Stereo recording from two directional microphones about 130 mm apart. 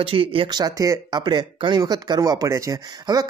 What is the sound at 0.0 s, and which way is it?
Speech, 45° right (ahead or behind).